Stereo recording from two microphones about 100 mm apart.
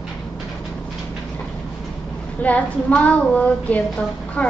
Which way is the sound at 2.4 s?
15° left (ahead or behind).